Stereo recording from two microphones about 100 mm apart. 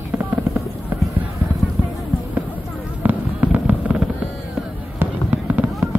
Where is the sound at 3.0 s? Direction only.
15° right (ahead or behind).